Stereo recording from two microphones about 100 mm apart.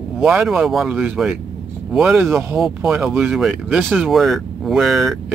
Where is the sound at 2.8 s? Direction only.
20° right (ahead or behind).